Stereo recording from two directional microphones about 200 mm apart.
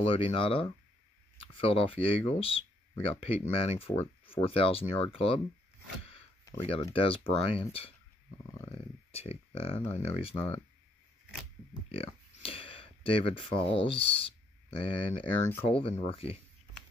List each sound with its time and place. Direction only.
0.0 s speech: 25° left (ahead or behind)
6.0 s a sound: 30° left (ahead or behind)
6.6 s speech: 25° left (ahead or behind)
11.9 s speech: 30° left (ahead or behind)